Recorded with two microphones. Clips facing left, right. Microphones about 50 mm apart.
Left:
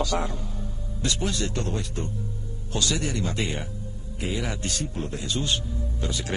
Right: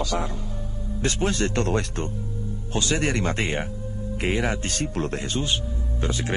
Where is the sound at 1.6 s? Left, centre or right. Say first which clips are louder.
Right 5 dB; right.